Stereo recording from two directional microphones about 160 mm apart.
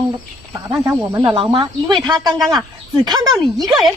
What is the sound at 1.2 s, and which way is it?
A woman's voice, 30° right (ahead or behind).